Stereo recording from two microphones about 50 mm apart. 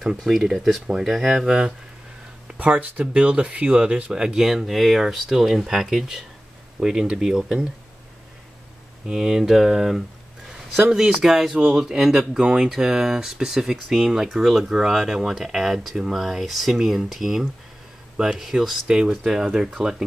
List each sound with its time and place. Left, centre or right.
0.2 s speech: centre
2.5 s speech: right; by 7.5 s centre
9.0 s speech: centre
10.8 s speech: centre